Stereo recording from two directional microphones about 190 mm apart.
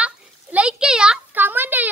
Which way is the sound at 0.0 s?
5° right (ahead or behind).